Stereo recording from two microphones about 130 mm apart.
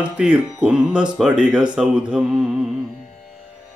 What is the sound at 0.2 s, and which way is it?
Speech, 10° right (ahead or behind).